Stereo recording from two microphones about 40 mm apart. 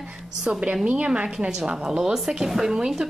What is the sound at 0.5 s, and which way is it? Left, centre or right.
A woman's voice, right.